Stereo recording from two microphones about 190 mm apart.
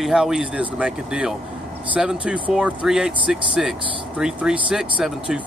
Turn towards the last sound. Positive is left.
turn(degrees=-5)  # may be behind; listen again after turning